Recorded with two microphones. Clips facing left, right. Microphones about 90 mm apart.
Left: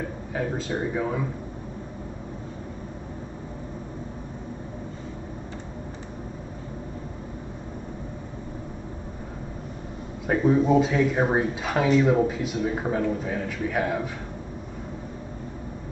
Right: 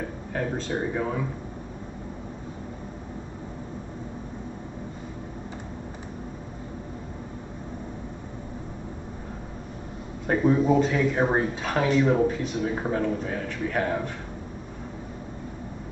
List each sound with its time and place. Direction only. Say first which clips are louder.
0.3 s speech: even; 5° left (ahead or behind)
10.2 s speech: left 1 dB; centre (ahead or behind)